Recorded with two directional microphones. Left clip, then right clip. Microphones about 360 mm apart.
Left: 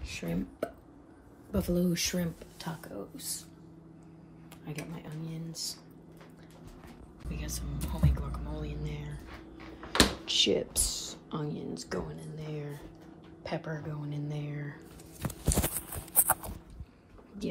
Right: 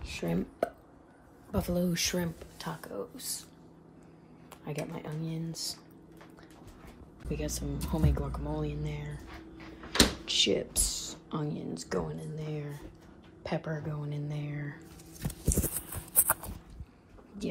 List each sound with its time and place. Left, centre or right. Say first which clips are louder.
0.0 s speech: right 3 dB; centre
4.6 s speech: right 5 dB; right
7.2 s speech: right 6 dB; centre
13.4 s a sound: right 2 dB; centre